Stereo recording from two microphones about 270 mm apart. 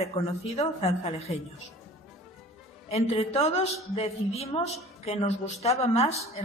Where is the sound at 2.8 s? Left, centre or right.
Left.